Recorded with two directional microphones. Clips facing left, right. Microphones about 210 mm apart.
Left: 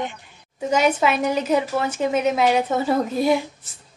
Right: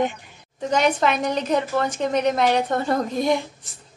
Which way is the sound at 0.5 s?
10° left (ahead or behind).